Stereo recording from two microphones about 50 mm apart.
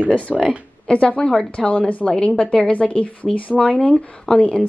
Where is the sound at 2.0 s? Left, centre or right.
Centre.